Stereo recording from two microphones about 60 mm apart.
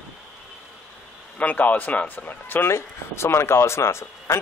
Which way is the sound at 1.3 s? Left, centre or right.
Left.